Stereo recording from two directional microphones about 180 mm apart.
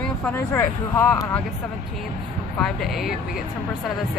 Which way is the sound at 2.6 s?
Centre (ahead or behind).